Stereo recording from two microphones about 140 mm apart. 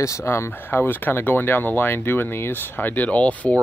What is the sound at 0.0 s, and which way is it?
A man's voice, 20° left (ahead or behind).